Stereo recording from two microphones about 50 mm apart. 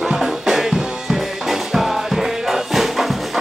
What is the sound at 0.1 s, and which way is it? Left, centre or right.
Music, centre.